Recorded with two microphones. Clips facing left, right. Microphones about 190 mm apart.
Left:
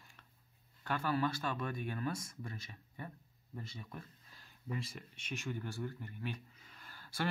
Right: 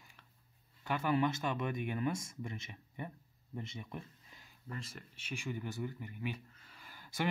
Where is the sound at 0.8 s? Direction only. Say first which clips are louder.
Right 3 dB; 15° right (ahead or behind).